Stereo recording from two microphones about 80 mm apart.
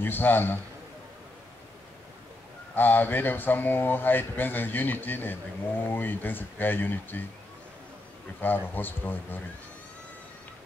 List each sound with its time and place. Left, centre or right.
0.0 s speech: left
2.7 s speech: left
8.4 s speech: left